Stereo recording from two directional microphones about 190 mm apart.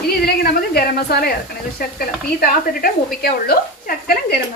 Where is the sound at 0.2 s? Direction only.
55° left (ahead or behind).